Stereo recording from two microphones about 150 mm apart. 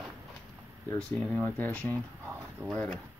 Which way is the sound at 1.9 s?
15° right (ahead or behind).